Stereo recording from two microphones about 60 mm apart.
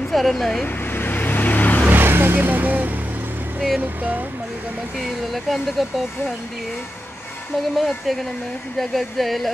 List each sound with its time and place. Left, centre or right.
0.1 s speech: centre
0.9 s vehicle: left
1.9 s vehicle: right
3.8 s speech: right
5.0 s speech: centre
7.7 s speech: centre